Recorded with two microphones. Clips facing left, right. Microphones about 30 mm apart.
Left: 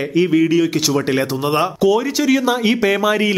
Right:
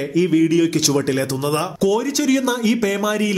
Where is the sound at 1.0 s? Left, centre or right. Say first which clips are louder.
Left 2 dB; left.